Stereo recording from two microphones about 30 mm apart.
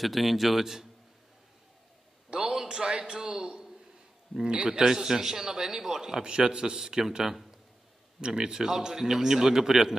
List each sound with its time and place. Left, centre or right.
0.0 s a man's voice: centre
2.3 s a sound: right
2.7 s a man's voice: right
6.2 s a man's voice: right
7.0 s speech: centre
8.4 s a man's voice: right
8.6 s speech: centre